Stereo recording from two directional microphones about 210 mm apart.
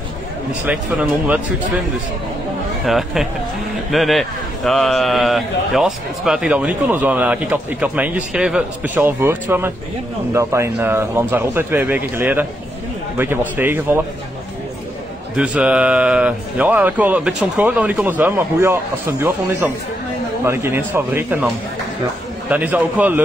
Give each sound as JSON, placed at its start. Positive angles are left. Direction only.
{"t": 0.7, "sound": "speech", "side_deg": -5}
{"t": 2.8, "sound": "a man's voice", "side_deg": 0}
{"t": 15.3, "sound": "speech", "side_deg": -5}
{"t": 22.5, "sound": "speech", "side_deg": -5}